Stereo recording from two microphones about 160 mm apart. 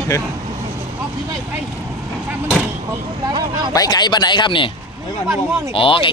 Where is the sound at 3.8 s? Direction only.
25° left (ahead or behind).